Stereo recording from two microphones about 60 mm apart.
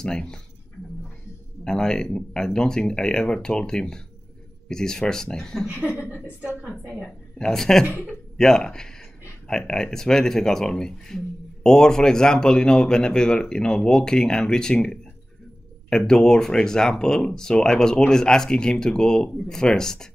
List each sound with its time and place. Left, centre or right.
0.0 s speech: centre
1.6 s speech: centre
5.7 s speech: right
6.9 s speech: centre
7.8 s a woman's voice: right
8.1 s speech: centre
16.1 s speech: centre